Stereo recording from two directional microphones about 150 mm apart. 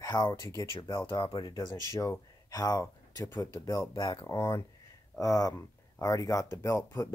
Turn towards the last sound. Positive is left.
turn(degrees=20)  # may be behind; listen again after turning